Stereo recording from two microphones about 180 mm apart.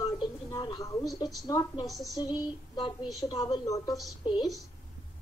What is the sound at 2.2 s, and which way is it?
Speech, 25° left (ahead or behind).